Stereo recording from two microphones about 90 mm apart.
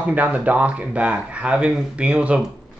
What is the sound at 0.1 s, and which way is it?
Speech, 15° right (ahead or behind).